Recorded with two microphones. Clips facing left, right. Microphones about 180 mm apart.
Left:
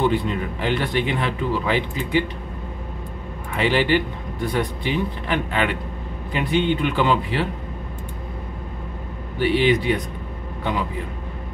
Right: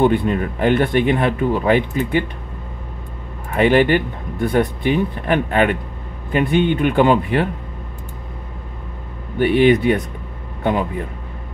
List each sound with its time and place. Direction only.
0.0 s speech: 55° right (ahead or behind)
3.5 s speech: 55° right (ahead or behind)
9.4 s a man's voice: 55° right (ahead or behind)